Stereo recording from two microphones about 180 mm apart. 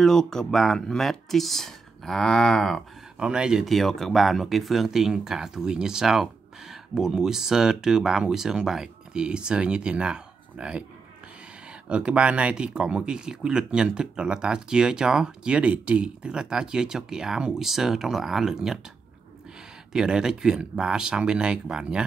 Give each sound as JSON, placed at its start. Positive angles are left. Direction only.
{"t": 0.0, "sound": "speech", "side_deg": 0}
{"t": 11.9, "sound": "speech", "side_deg": -5}
{"t": 19.9, "sound": "speech", "side_deg": -5}